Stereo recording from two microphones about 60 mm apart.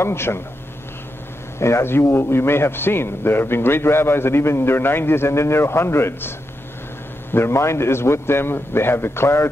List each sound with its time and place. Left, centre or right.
0.0 s a man's voice: left
1.6 s a man's voice: left